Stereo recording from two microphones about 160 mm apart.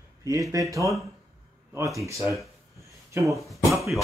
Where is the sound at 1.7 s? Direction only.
20° right (ahead or behind).